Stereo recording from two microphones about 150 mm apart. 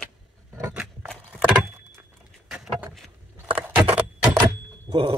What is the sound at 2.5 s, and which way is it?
Vehicle, 5° right (ahead or behind).